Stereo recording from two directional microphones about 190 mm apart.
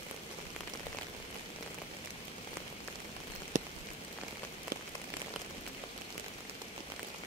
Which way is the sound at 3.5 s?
40° right (ahead or behind).